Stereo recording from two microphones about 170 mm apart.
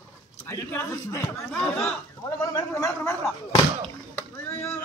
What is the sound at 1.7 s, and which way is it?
Speech, 5° left (ahead or behind).